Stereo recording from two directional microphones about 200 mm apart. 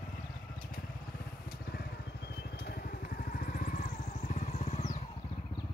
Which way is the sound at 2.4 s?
50° left (ahead or behind).